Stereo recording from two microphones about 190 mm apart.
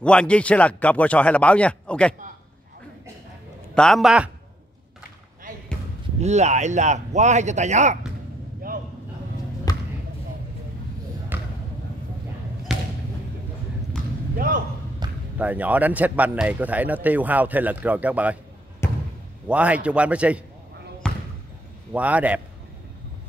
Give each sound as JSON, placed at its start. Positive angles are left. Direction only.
{"t": 0.0, "sound": "a man's voice", "side_deg": 5}
{"t": 3.7, "sound": "a man's voice", "side_deg": 0}
{"t": 6.2, "sound": "speech", "side_deg": -35}
{"t": 9.7, "sound": "basketball bounce", "side_deg": 20}
{"t": 11.3, "sound": "basketball bounce", "side_deg": -10}
{"t": 14.3, "sound": "basketball bounce", "side_deg": -45}
{"t": 15.0, "sound": "basketball bounce", "side_deg": -20}
{"t": 15.3, "sound": "a man's voice", "side_deg": -10}
{"t": 18.8, "sound": "a sound", "side_deg": 15}
{"t": 19.4, "sound": "a man's voice", "side_deg": -5}
{"t": 21.0, "sound": "basketball bounce", "side_deg": 5}
{"t": 21.9, "sound": "a man's voice", "side_deg": -5}